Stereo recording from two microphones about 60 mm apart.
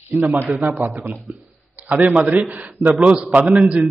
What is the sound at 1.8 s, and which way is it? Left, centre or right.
A man's voice, right.